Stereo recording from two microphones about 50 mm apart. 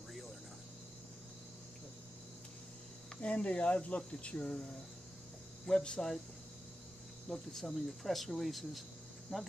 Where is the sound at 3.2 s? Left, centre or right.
Left.